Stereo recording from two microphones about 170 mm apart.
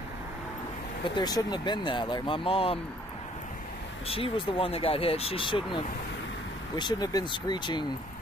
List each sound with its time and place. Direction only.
1.0 s speech: 25° left (ahead or behind)
4.1 s speech: 35° left (ahead or behind)
6.8 s speech: 25° left (ahead or behind)